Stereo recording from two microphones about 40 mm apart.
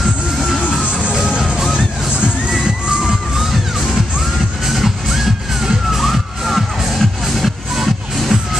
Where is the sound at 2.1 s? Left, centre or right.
Right.